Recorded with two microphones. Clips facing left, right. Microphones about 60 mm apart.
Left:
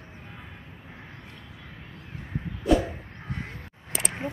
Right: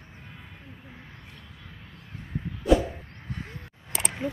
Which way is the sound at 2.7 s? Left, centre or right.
Centre.